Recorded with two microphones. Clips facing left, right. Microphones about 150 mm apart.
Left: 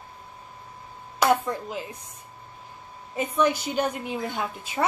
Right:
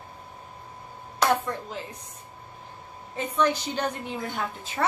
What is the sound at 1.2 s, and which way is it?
Speech, 10° left (ahead or behind).